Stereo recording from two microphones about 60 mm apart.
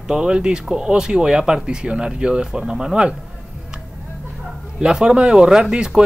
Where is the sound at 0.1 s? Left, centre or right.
Centre.